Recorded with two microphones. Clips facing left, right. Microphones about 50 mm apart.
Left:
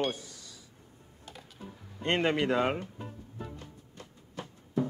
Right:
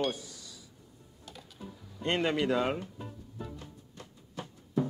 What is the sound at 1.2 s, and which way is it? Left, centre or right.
Typing, left.